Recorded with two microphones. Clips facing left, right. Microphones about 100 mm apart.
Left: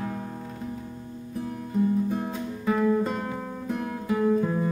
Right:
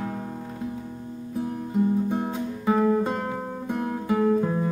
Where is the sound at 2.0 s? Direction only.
20° right (ahead or behind).